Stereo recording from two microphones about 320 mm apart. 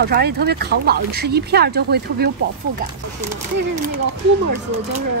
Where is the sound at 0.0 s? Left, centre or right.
Right.